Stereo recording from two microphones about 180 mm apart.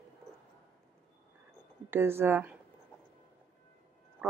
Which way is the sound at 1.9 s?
15° right (ahead or behind).